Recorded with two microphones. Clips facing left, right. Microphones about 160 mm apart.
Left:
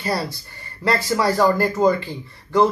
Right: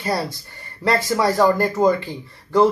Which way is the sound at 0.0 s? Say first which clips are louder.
Right 1 dB; 20° right (ahead or behind).